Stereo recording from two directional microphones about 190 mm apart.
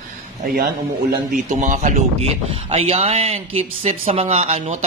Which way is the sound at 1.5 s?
40° right (ahead or behind).